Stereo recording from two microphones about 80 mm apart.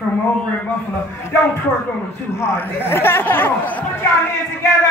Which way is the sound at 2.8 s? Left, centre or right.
Left.